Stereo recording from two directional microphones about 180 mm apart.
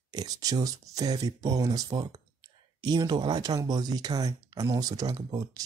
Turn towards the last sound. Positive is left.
turn(degrees=-20)  # may be behind; listen again after turning